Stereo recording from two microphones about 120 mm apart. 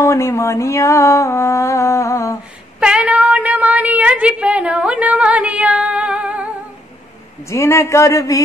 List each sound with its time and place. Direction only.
0.0 s mantra: 25° left (ahead or behind)
2.8 s a sound: 10° right (ahead or behind)
7.4 s mantra: 25° left (ahead or behind)